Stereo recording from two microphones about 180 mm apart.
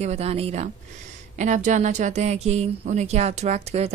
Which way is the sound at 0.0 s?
35° right (ahead or behind).